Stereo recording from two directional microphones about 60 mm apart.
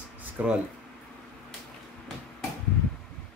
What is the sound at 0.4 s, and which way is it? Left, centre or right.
Speech, right.